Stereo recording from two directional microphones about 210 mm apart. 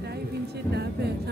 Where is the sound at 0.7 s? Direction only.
50° right (ahead or behind).